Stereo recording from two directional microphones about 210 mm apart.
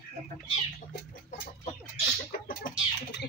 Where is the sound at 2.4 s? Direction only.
40° left (ahead or behind).